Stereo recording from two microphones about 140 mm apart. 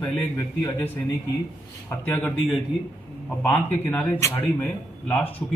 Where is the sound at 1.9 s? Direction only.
10° left (ahead or behind).